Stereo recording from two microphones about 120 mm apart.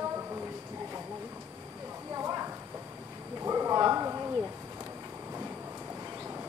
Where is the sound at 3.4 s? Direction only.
25° right (ahead or behind).